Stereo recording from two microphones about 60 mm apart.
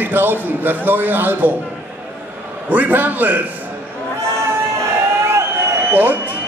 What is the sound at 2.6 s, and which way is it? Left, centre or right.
Speech, right.